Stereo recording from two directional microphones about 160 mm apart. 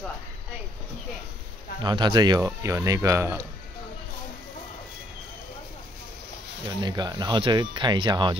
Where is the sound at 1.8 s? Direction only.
30° right (ahead or behind).